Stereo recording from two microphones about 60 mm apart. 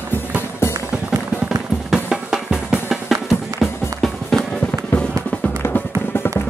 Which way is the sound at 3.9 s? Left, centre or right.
Centre.